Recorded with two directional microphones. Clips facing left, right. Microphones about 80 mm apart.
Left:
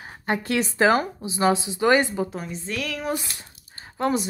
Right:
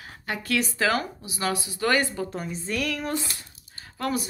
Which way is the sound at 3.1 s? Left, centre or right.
Left.